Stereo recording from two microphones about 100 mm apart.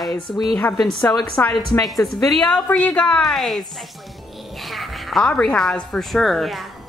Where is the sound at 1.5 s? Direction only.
45° left (ahead or behind).